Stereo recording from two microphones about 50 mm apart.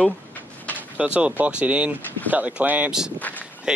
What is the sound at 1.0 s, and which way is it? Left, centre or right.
Speech, right.